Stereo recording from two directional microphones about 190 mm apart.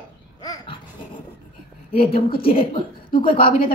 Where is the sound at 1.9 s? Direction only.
30° left (ahead or behind).